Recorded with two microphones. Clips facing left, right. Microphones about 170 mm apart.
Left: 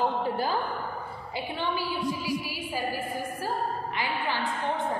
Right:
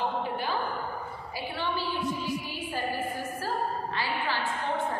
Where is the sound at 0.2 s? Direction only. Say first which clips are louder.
Left 3 dB; 40° left (ahead or behind).